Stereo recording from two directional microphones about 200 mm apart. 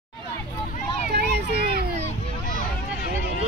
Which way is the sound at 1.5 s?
50° right (ahead or behind).